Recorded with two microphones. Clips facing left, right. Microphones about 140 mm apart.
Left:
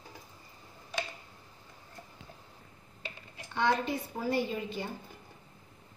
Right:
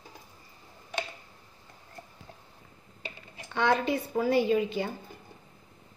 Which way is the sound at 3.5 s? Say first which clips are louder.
Right 3 dB; 80° right.